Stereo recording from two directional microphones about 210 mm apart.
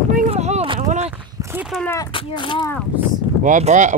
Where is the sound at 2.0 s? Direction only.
25° left (ahead or behind).